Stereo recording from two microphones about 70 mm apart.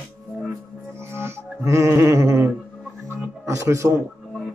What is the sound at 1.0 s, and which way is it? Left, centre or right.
Music, right.